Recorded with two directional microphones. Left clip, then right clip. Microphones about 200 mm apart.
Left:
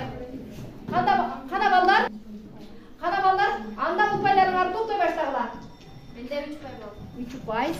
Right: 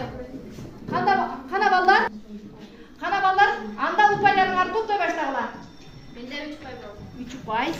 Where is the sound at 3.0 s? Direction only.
20° left (ahead or behind).